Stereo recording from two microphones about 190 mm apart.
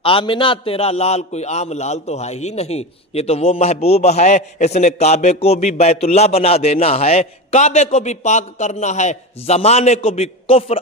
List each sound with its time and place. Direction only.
0.0 s a man's voice: 25° left (ahead or behind)